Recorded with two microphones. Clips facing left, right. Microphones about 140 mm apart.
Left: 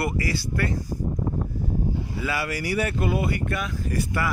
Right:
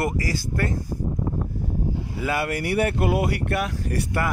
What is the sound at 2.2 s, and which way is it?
Speech, 50° right (ahead or behind).